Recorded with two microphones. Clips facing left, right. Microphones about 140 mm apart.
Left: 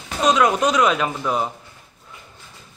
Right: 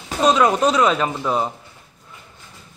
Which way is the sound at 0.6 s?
30° right (ahead or behind).